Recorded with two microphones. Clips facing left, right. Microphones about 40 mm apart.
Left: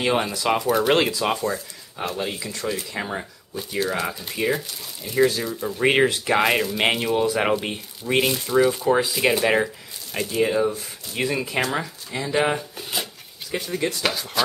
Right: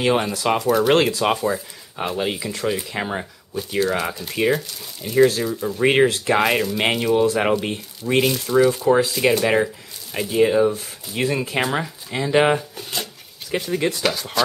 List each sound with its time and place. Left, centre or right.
0.0 s speech: centre
3.8 s speech: centre
10.1 s speech: centre
12.3 s speech: right
12.5 s speech: centre